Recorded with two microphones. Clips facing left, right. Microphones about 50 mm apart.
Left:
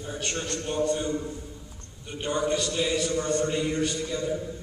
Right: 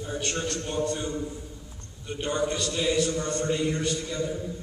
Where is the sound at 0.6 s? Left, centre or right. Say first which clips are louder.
Left 6 dB; centre.